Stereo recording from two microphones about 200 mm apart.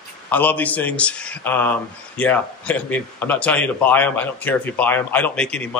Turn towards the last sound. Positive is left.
turn(degrees=5)  # may be behind; listen again after turning